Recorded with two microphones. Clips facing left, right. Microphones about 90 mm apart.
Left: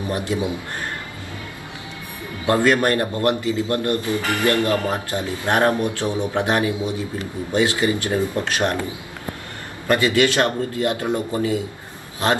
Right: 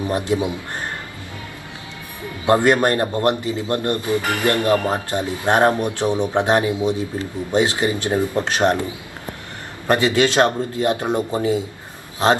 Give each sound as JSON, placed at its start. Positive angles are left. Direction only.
{"t": 0.0, "sound": "speech", "side_deg": -20}
{"t": 2.4, "sound": "speech", "side_deg": -20}
{"t": 9.8, "sound": "speech", "side_deg": -20}